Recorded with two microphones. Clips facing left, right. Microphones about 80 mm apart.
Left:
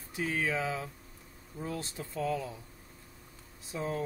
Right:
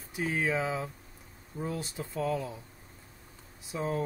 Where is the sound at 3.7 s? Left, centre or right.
Centre.